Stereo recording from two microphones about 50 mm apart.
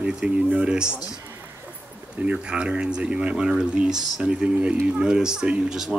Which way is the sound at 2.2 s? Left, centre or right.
Right.